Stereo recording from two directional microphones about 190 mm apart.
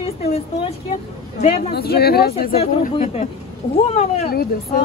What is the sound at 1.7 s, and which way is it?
Speech, 55° left (ahead or behind).